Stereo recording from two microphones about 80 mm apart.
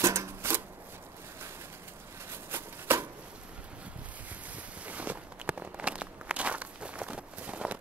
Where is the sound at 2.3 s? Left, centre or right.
Right.